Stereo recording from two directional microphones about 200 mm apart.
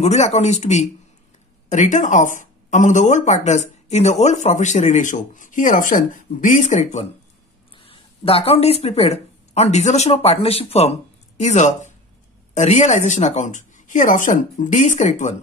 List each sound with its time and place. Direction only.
0.0 s speech: 35° left (ahead or behind)
7.7 s a sound: 25° left (ahead or behind)
8.8 s speech: 30° left (ahead or behind)